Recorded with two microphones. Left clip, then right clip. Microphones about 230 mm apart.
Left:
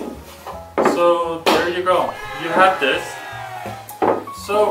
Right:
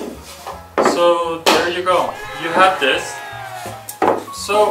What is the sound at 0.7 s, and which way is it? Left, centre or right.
Music, centre.